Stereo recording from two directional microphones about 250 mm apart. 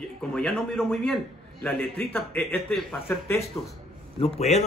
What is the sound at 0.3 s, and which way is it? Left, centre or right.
A man's voice, centre.